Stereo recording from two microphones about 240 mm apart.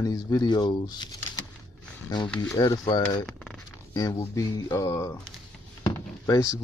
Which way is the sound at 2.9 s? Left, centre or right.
Centre.